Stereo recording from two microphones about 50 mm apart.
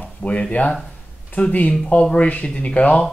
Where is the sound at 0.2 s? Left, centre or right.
Left.